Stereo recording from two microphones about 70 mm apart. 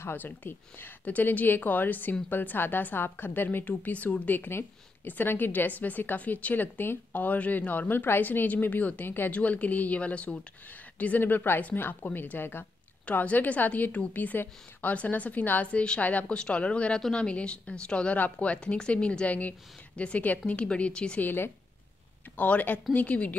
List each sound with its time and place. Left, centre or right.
0.0 s a woman's voice: left
21.2 s a woman's voice: left